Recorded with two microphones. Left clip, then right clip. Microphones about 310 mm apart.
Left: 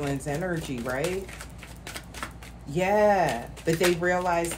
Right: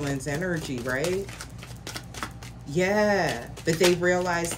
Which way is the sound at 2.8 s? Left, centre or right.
Centre.